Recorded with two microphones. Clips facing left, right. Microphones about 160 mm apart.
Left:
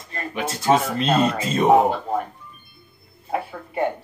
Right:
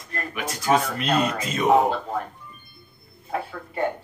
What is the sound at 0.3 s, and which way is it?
Speech, 30° left (ahead or behind).